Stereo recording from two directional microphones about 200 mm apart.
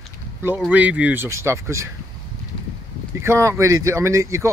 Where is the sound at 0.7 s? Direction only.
5° right (ahead or behind).